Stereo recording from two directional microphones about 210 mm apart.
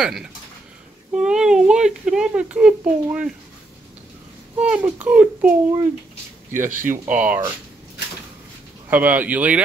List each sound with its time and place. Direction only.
0.0 s a child's voice: 5° right (ahead or behind)
4.6 s a child's voice: 5° right (ahead or behind)
6.5 s speech: 40° right (ahead or behind)
6.9 s a child's voice: 10° right (ahead or behind)
8.9 s a child's voice: 5° right (ahead or behind)